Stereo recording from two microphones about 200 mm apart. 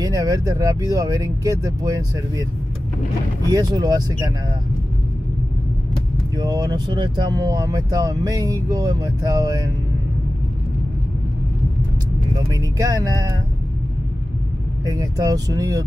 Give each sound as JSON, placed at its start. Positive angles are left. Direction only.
{"t": 0.0, "sound": "speech", "side_deg": -20}
{"t": 3.4, "sound": "speech", "side_deg": -20}
{"t": 6.3, "sound": "speech", "side_deg": -20}
{"t": 12.4, "sound": "speech", "side_deg": -15}
{"t": 14.9, "sound": "speech", "side_deg": -20}